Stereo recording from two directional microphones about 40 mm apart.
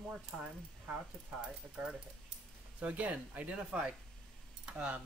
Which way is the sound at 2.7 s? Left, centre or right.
Right.